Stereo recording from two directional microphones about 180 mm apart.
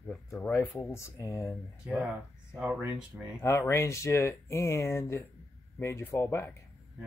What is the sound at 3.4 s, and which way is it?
Speech, 15° left (ahead or behind).